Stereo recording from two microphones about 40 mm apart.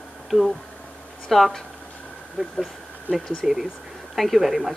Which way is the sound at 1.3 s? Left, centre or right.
Centre.